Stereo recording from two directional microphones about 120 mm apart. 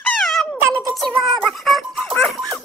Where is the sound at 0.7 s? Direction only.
Centre (ahead or behind).